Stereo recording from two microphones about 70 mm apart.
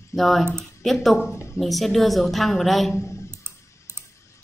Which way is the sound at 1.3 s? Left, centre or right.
Left.